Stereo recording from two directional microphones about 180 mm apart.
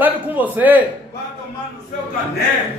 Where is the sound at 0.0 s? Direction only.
10° right (ahead or behind).